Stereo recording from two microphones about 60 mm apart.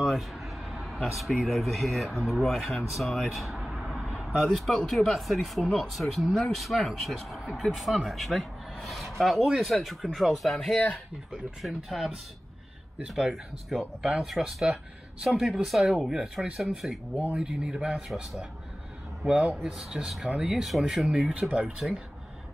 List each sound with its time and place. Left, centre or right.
0.0 s a sound: centre
1.3 s speech: centre
2.9 s a sound: centre
4.1 s speech: centre
18.0 s speech: centre
21.2 s speech: centre